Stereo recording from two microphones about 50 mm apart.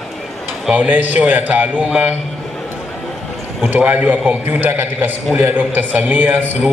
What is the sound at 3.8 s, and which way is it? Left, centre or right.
A man's voice, right.